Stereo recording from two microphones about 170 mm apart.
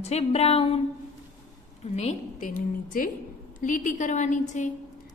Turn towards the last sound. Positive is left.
turn(degrees=45)  # may be behind; listen again after turning